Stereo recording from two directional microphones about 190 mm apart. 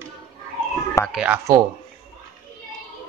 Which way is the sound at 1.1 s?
10° right (ahead or behind).